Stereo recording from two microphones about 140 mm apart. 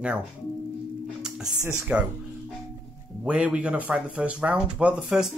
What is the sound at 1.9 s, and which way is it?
Speech, 10° right (ahead or behind).